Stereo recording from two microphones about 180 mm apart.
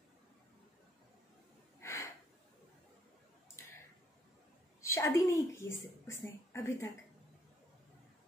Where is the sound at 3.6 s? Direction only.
15° left (ahead or behind).